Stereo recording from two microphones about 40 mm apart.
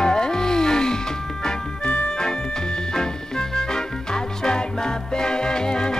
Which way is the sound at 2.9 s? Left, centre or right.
Centre.